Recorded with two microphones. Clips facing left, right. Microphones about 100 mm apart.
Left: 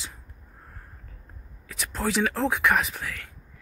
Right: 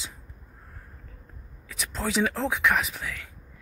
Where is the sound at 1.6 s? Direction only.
5° left (ahead or behind).